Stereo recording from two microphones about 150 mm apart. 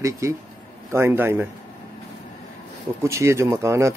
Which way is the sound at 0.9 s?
15° right (ahead or behind).